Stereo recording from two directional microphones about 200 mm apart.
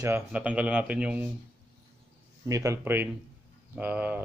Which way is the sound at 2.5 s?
15° right (ahead or behind).